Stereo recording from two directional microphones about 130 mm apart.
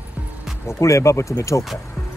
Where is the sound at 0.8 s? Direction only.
25° left (ahead or behind).